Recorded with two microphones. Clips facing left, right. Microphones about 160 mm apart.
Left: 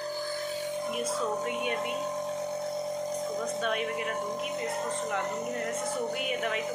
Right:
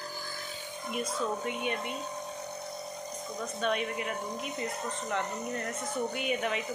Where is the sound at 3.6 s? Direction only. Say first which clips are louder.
Left 1 dB; centre (ahead or behind).